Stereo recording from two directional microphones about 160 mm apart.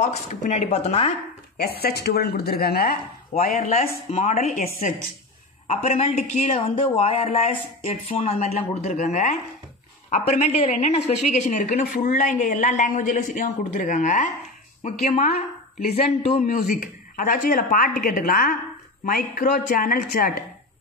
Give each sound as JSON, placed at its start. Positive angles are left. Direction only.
{"t": 0.0, "sound": "a woman's voice", "side_deg": 45}
{"t": 1.6, "sound": "speech", "side_deg": 75}
{"t": 3.5, "sound": "speech", "side_deg": 40}
{"t": 5.7, "sound": "a woman's voice", "side_deg": 45}
{"t": 15.8, "sound": "speech", "side_deg": 75}
{"t": 16.3, "sound": "speech", "side_deg": 50}